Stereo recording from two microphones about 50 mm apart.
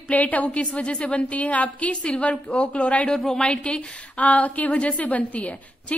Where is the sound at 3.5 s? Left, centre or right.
Centre.